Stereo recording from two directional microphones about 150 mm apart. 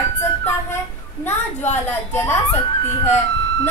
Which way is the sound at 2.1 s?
15° left (ahead or behind).